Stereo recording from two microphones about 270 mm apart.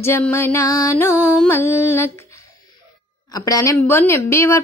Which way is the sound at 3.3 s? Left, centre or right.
Centre.